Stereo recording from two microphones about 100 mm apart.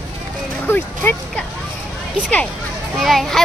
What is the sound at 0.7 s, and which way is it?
Speech, 20° left (ahead or behind).